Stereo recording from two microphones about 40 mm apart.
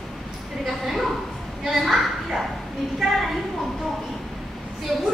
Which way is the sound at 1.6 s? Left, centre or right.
Centre.